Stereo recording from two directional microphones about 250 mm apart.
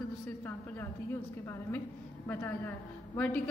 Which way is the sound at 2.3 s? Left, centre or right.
Centre.